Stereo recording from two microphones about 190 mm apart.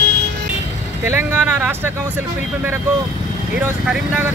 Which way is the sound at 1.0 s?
10° right (ahead or behind).